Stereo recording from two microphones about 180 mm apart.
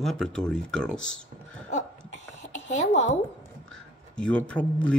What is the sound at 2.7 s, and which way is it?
Speech, 40° left (ahead or behind).